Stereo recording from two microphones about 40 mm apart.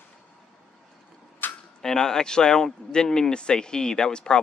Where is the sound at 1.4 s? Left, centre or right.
Left.